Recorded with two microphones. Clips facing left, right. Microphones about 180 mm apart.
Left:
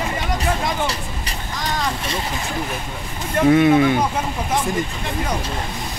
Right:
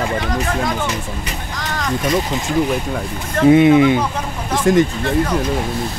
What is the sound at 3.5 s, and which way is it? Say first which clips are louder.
Speech: right 4 dB; 20° right (ahead or behind).